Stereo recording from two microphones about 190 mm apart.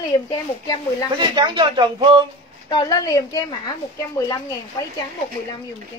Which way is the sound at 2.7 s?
20° left (ahead or behind).